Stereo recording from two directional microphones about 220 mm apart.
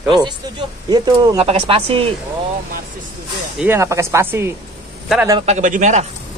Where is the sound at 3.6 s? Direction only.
10° right (ahead or behind).